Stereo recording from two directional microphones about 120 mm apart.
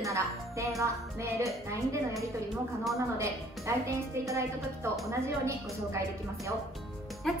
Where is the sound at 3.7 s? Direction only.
25° right (ahead or behind).